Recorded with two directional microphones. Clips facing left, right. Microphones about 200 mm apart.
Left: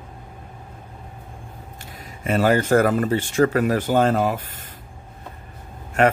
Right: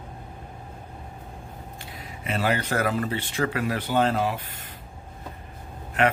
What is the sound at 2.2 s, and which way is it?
Speech, 45° left (ahead or behind).